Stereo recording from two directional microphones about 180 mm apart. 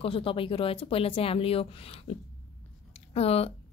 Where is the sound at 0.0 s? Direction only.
30° left (ahead or behind).